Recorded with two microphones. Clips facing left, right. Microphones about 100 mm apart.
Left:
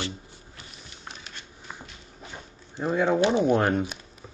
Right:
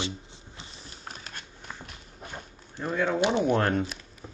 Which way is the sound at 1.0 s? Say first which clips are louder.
Right 1 dB; 45° right (ahead or behind).